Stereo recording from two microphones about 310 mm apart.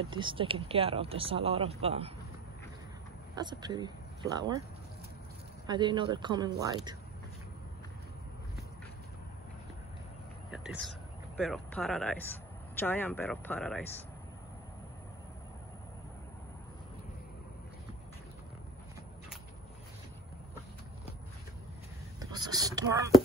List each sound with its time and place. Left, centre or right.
0.1 s speech: centre
3.3 s speech: centre
5.7 s speech: centre
10.5 s speech: centre
22.2 s whispering: centre